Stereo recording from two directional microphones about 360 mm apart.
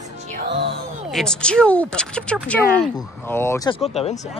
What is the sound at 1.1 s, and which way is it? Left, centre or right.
Speech, centre.